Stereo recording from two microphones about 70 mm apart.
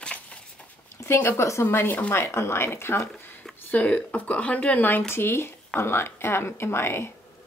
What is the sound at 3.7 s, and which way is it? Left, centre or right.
Speech, centre.